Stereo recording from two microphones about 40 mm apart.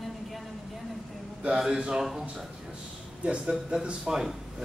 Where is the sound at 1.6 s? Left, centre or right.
Centre.